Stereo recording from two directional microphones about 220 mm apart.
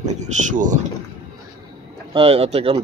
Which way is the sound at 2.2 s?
25° right (ahead or behind).